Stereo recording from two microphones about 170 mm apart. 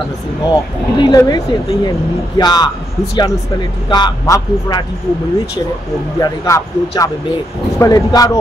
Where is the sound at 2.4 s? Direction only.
25° left (ahead or behind).